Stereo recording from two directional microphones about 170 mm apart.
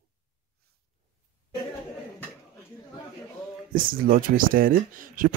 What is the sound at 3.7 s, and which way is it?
Speech, 60° right (ahead or behind).